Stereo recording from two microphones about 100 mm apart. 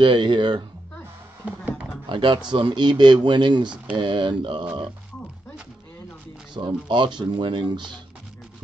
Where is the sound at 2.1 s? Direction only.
55° right (ahead or behind).